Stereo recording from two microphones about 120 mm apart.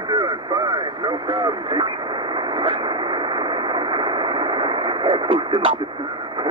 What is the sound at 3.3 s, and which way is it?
Radio, 40° right (ahead or behind).